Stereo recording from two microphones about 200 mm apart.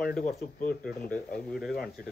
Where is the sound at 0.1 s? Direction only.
50° left (ahead or behind).